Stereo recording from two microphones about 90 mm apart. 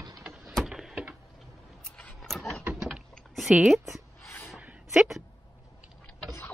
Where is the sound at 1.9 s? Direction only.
15° left (ahead or behind).